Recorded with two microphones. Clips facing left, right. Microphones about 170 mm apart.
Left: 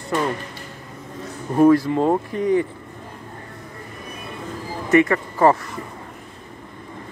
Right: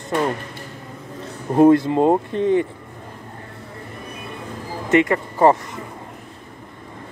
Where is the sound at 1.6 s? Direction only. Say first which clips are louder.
Right 2 dB; 25° right (ahead or behind).